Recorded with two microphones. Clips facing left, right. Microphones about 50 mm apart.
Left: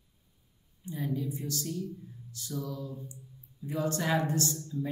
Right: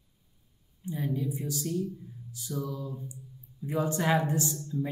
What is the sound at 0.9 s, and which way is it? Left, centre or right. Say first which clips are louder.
A woman's voice: right 2 dB; centre.